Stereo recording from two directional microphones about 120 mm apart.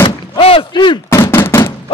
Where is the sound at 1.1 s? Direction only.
20° left (ahead or behind).